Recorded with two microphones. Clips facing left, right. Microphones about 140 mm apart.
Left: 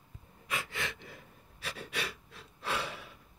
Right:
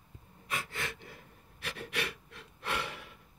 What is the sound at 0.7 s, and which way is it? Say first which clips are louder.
Gasp: left 1 dB; 55° right (ahead or behind).